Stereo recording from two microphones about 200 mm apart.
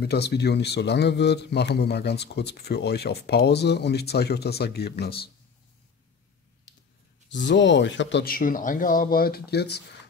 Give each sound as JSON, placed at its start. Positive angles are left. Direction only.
{"t": 0.0, "sound": "speech", "side_deg": 55}
{"t": 7.2, "sound": "speech", "side_deg": 65}